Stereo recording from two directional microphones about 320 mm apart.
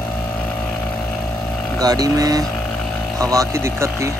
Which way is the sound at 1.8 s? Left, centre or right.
Centre.